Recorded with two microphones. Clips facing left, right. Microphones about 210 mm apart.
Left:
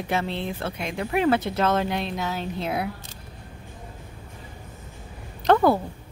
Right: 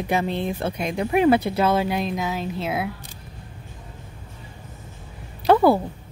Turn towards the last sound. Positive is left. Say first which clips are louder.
# right 2 dB
turn(degrees=-10)  # may be behind; listen again after turning